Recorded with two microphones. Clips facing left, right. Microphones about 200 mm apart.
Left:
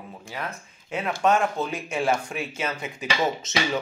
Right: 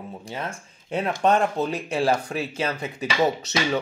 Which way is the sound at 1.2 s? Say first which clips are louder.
Right 1 dB; 35° right (ahead or behind).